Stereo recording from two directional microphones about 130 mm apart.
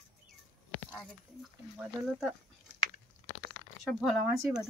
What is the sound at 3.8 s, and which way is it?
Speech, centre (ahead or behind).